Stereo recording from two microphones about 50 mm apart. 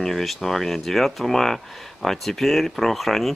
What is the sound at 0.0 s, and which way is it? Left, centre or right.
Speech, centre.